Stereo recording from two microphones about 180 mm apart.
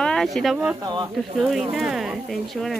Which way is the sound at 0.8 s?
25° right (ahead or behind).